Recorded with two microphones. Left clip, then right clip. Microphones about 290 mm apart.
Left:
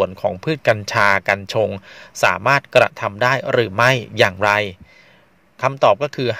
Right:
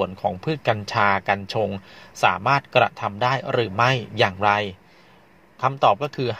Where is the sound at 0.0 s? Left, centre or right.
Left.